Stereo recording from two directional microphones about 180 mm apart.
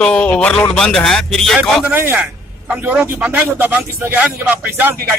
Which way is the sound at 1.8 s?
10° right (ahead or behind).